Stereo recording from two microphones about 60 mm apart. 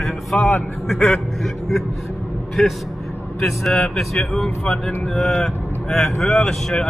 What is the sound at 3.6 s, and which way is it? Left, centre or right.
Speech, centre.